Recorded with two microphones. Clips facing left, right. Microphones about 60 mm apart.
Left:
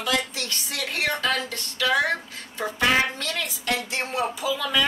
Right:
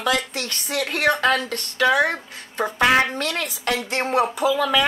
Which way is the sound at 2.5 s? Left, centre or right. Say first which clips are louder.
Right 4 dB; right.